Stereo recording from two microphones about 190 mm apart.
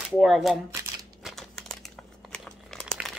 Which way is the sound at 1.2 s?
Centre (ahead or behind).